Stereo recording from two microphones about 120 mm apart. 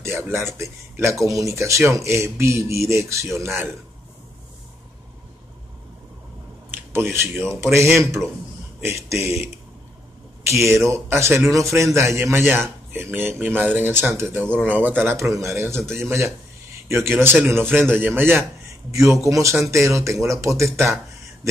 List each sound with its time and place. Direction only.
0.3 s speech: 25° right (ahead or behind)
6.7 s speech: 20° right (ahead or behind)
10.5 s speech: 25° right (ahead or behind)